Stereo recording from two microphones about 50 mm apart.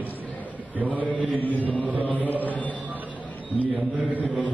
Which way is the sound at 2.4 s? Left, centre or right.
Left.